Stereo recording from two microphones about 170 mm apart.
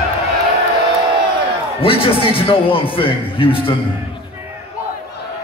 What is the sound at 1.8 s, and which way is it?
A man's voice, 30° left (ahead or behind).